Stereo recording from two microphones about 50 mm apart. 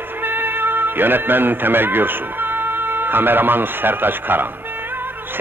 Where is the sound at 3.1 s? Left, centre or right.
Right.